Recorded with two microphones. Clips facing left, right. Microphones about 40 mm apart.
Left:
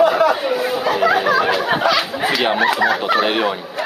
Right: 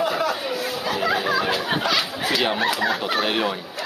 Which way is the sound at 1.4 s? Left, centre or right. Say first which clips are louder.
Left 6 dB; left.